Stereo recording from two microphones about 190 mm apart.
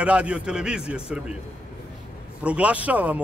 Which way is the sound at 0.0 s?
5° right (ahead or behind).